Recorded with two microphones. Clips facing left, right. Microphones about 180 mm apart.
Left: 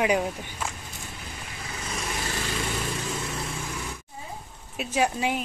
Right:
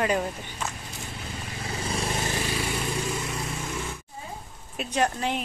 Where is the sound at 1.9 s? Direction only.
30° right (ahead or behind).